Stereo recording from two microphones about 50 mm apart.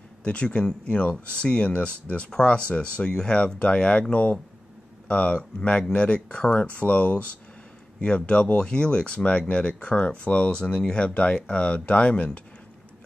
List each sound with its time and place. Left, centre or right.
0.2 s speech: left